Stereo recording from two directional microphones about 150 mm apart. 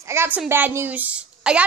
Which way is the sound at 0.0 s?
15° right (ahead or behind).